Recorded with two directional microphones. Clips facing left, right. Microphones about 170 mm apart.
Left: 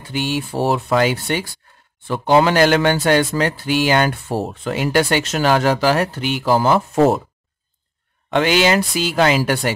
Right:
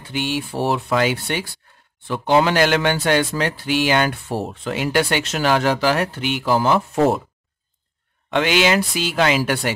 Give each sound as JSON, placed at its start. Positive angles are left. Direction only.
{"t": 0.1, "sound": "speech", "side_deg": 40}
{"t": 8.3, "sound": "speech", "side_deg": 40}